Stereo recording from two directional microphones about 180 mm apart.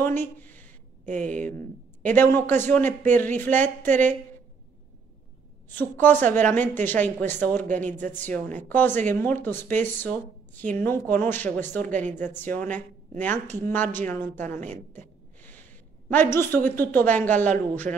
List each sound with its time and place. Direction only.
0.0 s a sound: 10° left (ahead or behind)
1.0 s speech: 45° right (ahead or behind)
2.0 s speech: 10° left (ahead or behind)
5.8 s speech: 10° left (ahead or behind)